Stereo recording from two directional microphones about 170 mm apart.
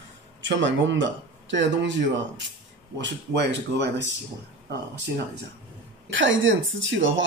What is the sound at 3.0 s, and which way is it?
Speech, 90° right.